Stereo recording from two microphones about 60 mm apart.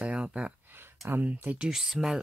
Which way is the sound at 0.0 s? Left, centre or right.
Centre.